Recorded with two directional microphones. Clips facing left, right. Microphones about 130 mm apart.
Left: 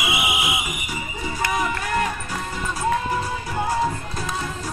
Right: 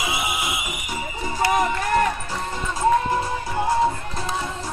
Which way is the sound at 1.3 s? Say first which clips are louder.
Right 4 dB; 35° right (ahead or behind).